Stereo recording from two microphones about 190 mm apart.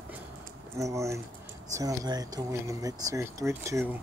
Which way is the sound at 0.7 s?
15° right (ahead or behind).